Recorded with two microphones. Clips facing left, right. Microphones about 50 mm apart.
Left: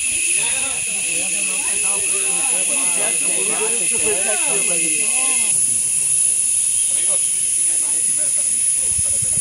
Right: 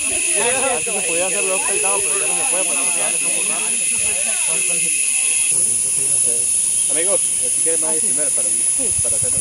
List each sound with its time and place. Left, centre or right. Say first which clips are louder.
0.4 s speech: right 7 dB; right
2.8 s speech: right 1 dB; centre
3.6 s speech: left 4 dB; centre
7.6 s speech: right 11 dB; right